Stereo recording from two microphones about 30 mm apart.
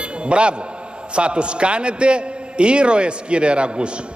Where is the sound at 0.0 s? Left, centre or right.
Right.